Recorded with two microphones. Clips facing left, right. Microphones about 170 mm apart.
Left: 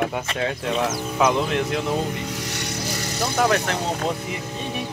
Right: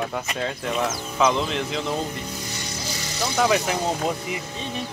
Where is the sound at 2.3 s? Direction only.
80° left; by 3.3 s 55° left (ahead or behind).